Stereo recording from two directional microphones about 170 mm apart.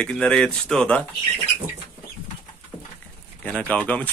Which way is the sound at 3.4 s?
10° left (ahead or behind).